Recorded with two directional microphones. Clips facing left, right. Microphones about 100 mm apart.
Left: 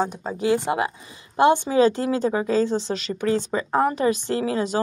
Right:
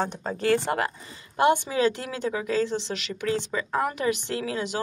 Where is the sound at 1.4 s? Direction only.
30° left (ahead or behind).